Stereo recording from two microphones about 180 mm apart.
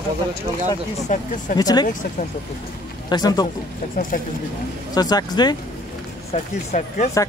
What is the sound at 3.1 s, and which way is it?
Speech, 20° left (ahead or behind).